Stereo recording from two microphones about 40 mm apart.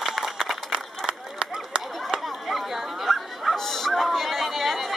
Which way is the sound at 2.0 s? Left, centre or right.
Centre.